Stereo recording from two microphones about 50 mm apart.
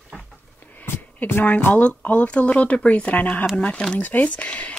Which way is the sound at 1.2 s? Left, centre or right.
Left.